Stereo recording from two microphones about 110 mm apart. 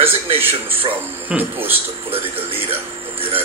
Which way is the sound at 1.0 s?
15° right (ahead or behind).